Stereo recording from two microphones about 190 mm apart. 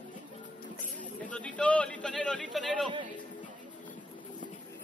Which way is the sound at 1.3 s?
5° left (ahead or behind).